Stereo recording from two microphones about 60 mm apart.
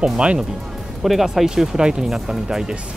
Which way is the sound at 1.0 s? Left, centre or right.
Centre.